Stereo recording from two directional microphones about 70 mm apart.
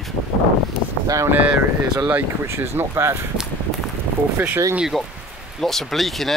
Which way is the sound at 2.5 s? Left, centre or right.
Right.